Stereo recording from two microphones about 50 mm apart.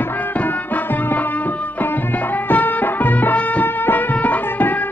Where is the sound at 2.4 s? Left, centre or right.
Left.